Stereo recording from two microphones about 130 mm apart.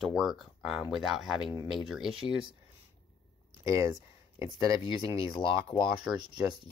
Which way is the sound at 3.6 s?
25° right (ahead or behind).